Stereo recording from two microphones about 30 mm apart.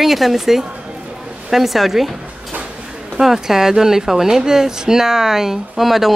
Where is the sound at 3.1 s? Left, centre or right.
Centre.